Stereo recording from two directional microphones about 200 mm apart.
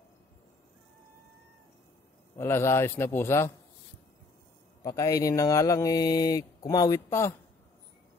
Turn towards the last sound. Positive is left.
turn(degrees=15)  # may be behind; listen again after turning